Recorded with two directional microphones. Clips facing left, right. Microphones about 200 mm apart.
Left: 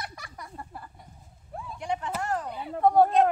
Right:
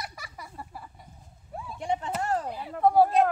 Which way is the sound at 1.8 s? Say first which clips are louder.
Right 2 dB; 25° right (ahead or behind).